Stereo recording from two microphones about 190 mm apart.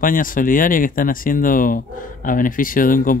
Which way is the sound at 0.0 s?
45° left (ahead or behind).